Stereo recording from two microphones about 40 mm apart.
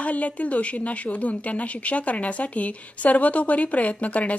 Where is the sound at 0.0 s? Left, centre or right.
Left.